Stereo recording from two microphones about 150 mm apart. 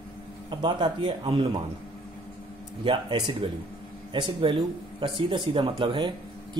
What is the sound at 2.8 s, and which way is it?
Speech, 35° right (ahead or behind).